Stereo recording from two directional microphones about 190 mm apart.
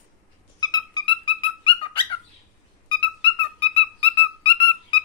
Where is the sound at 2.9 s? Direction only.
25° left (ahead or behind).